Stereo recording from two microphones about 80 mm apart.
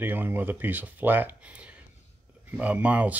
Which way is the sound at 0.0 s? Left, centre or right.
Right.